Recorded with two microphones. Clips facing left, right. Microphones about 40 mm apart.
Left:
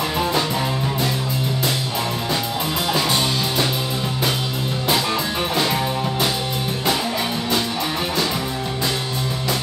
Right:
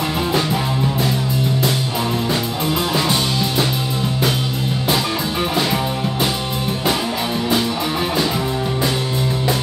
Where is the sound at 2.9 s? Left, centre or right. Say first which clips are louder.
Right 1 dB; centre.